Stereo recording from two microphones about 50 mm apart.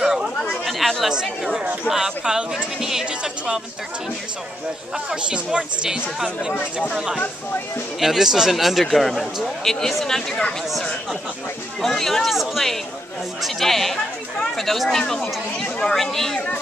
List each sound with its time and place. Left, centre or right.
0.7 s chatter: centre
1.9 s speech: centre
4.9 s speech: centre
8.0 s speech: centre
11.8 s speech: centre